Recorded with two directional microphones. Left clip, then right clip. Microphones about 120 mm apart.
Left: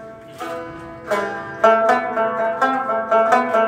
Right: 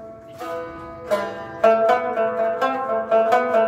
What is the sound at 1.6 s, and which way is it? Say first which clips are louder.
Music: left 2 dB; 20° right (ahead or behind).